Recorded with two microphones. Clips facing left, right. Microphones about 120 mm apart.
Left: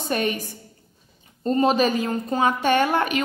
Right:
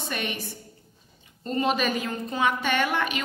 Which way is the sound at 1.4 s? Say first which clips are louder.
Left 6 dB; 40° left (ahead or behind).